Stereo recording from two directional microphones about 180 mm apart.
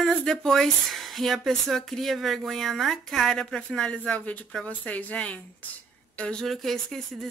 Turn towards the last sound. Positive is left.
turn(degrees=0)  # may be behind; listen again after turning